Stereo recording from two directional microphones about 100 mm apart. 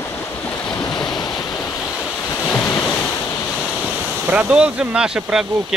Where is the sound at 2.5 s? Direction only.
20° left (ahead or behind).